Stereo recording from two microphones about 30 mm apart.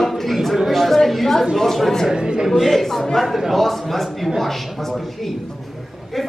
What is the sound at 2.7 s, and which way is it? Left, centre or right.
Speech, centre.